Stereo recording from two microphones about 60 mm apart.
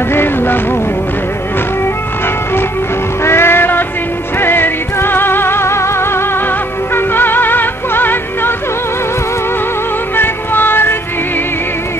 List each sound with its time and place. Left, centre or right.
0.1 s music: left
3.3 s music: left
10.1 s music: left